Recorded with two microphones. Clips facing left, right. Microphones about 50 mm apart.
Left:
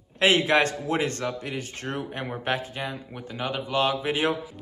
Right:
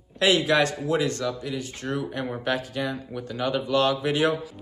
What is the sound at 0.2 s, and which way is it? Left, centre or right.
Speech, left.